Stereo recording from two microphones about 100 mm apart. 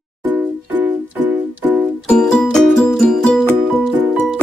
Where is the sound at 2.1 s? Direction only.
10° left (ahead or behind).